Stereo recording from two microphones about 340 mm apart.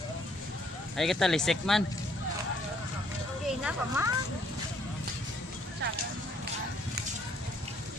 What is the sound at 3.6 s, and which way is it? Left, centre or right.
Speech, centre.